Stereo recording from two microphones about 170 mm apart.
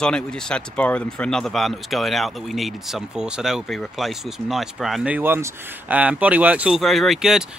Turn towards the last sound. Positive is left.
turn(degrees=0)  # may be behind; listen again after turning